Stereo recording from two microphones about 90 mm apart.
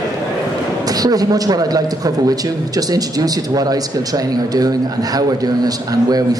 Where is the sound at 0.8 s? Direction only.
45° right (ahead or behind).